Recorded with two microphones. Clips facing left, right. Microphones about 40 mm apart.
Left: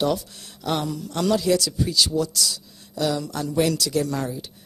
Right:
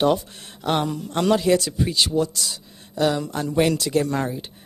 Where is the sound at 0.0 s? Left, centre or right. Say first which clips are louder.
Right 4 dB; right.